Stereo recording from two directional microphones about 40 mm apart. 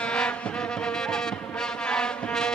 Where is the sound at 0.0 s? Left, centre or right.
Left.